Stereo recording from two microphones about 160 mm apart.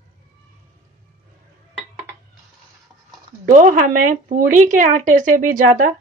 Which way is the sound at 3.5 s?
50° right (ahead or behind).